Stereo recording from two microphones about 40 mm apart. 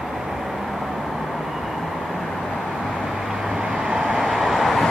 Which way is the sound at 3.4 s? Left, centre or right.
Centre.